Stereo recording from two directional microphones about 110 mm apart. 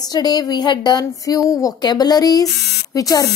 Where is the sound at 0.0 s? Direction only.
35° left (ahead or behind).